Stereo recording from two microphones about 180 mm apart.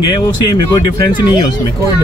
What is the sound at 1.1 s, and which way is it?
Speech, 10° right (ahead or behind).